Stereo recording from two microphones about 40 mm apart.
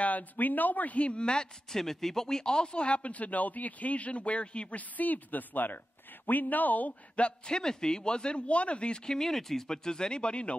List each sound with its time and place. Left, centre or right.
0.0 s speech: left
1.7 s speech: centre; by 6.9 s left
7.2 s a man's voice: left
9.2 s speech: centre; by 10.5 s left